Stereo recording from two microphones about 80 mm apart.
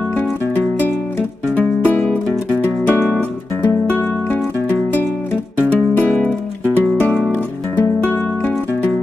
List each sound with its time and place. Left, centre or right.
1.6 s music: left
7.8 s music: left